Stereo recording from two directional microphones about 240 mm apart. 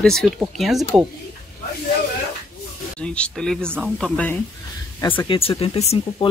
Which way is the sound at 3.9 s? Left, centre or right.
Centre.